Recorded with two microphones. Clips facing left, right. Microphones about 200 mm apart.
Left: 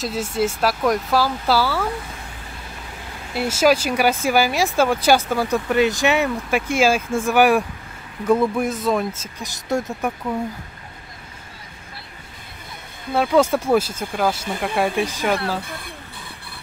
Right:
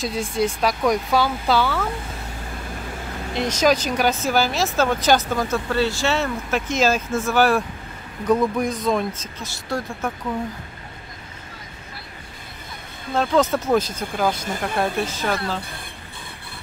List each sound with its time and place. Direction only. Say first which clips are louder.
0.0 s speech: even; 5° left (ahead or behind)
3.3 s speech: left 2 dB; 5° left (ahead or behind)
9.7 s speech: left 4 dB; 20° left (ahead or behind)
13.1 s speech: left 2 dB; 10° left (ahead or behind)